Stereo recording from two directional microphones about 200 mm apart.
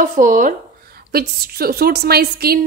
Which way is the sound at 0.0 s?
40° right (ahead or behind).